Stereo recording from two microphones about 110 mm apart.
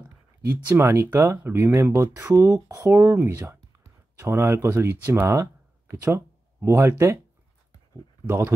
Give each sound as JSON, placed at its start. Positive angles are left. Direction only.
{"t": 0.5, "sound": "speech", "side_deg": -25}